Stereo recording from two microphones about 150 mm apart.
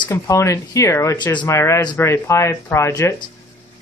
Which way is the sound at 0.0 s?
25° left (ahead or behind).